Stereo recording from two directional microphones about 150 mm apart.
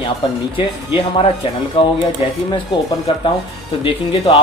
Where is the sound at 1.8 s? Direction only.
35° left (ahead or behind).